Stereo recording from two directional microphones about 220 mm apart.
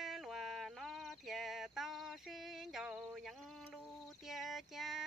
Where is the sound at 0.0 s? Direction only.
Centre (ahead or behind).